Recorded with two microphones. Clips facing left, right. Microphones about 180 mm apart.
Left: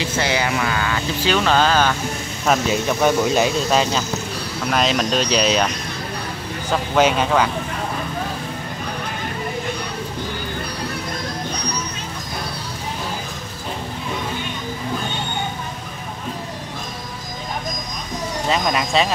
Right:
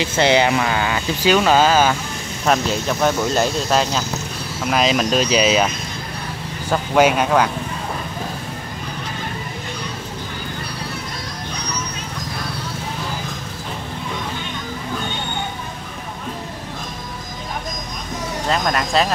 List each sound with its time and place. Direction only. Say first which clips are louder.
0.2 s speech: right 6 dB; 25° right (ahead or behind)
1.2 s speech: right 3 dB; 10° right (ahead or behind)
2.4 s speech: even; 5° left (ahead or behind)
6.7 s speech: right 2 dB; 5° right (ahead or behind)
18.5 s speech: even; centre (ahead or behind)